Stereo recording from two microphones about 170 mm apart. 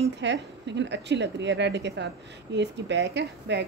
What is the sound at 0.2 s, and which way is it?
A woman's voice, 90° right.